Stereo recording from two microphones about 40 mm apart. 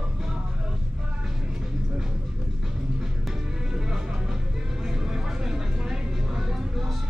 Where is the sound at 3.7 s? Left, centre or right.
Centre.